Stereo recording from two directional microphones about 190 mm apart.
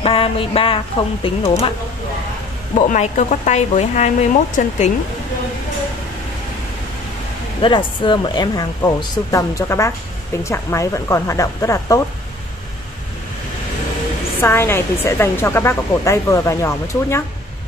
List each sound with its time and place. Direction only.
0.0 s speech: 30° left (ahead or behind)
2.9 s speech: 40° left (ahead or behind)
7.6 s speech: 25° left (ahead or behind)
14.4 s speech: 10° left (ahead or behind)